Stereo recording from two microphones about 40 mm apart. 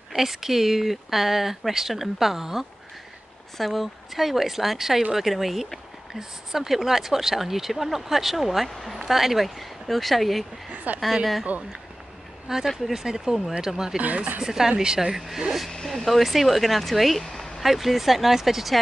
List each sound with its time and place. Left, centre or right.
0.1 s speech: centre
10.7 s a sound: right
12.6 s speech: centre
14.0 s speech: right
14.4 s speech: centre
15.0 s speech: centre